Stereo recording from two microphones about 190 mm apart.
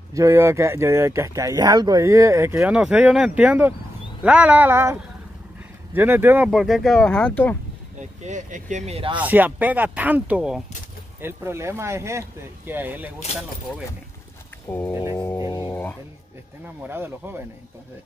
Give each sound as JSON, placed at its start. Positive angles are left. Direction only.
{"t": 0.1, "sound": "speech", "side_deg": -15}
{"t": 5.9, "sound": "speech", "side_deg": -10}
{"t": 8.0, "sound": "speech", "side_deg": -40}
{"t": 9.2, "sound": "speech", "side_deg": -10}
{"t": 15.3, "sound": "speech", "side_deg": 25}
{"t": 15.7, "sound": "speech", "side_deg": 10}
{"t": 16.6, "sound": "speech", "side_deg": -10}